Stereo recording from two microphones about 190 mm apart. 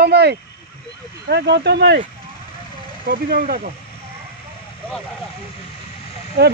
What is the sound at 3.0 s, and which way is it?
Speech, 45° right (ahead or behind).